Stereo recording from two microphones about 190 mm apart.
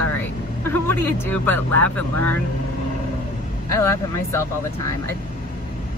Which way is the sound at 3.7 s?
15° left (ahead or behind).